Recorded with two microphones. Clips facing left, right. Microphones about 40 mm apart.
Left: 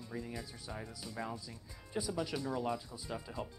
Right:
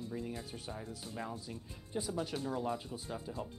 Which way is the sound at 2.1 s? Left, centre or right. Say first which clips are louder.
Even; right.